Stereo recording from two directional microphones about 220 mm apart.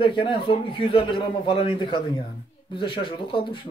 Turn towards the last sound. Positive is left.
turn(degrees=20)  # may be behind; listen again after turning